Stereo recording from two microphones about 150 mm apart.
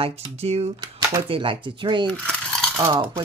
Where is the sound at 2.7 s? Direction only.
20° right (ahead or behind).